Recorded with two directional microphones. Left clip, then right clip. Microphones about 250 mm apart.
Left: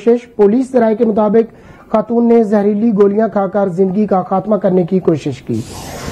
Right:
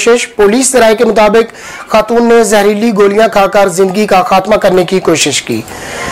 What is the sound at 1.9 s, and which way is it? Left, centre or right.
Speech, centre.